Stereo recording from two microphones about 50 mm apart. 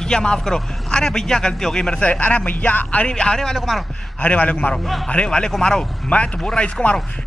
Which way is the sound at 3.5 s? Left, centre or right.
Centre.